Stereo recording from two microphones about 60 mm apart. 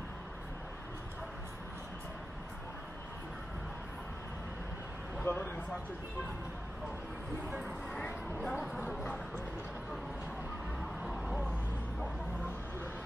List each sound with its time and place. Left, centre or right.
5.2 s speech: left
7.9 s a sound: centre
11.0 s vehicle: centre